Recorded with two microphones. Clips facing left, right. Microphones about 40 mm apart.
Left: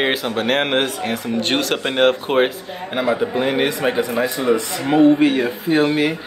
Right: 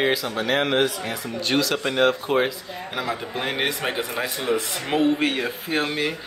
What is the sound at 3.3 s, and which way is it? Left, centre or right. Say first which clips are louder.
Speech: left 7 dB; centre.